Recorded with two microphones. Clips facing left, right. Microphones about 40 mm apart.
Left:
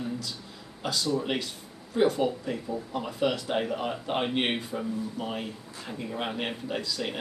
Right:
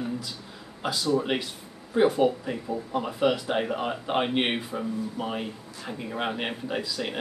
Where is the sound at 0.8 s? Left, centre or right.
Centre.